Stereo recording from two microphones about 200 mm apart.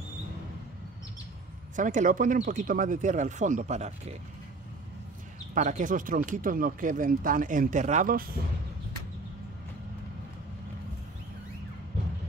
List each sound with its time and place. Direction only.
1.8 s speech: 40° right (ahead or behind)
5.5 s speech: 40° right (ahead or behind)